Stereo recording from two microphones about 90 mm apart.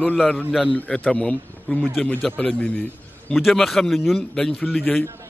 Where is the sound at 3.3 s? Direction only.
Centre (ahead or behind).